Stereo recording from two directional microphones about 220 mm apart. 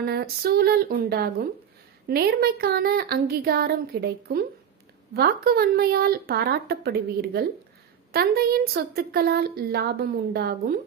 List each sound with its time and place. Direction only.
0.0 s speech: 45° right (ahead or behind)